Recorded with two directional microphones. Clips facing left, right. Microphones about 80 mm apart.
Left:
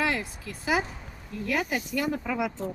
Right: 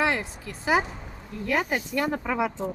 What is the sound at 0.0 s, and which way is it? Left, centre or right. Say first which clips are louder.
A woman's voice: right 3 dB; right.